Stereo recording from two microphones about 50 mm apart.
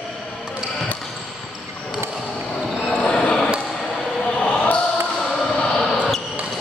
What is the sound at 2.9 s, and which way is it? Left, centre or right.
Basketball bounce, centre.